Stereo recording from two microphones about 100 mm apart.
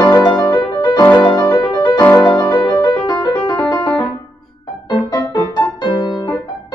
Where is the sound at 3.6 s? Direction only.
15° left (ahead or behind).